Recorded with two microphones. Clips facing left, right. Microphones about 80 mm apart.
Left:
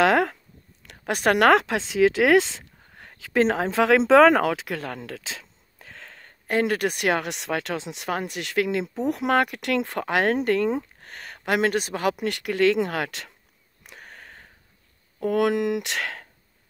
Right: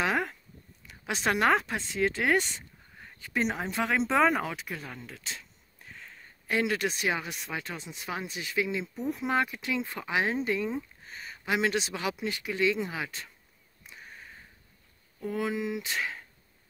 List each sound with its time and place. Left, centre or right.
0.0 s a sound: left
1.0 s speech: left
6.4 s speech: left
8.1 s speech: left
13.8 s sniff: left
15.1 s speech: left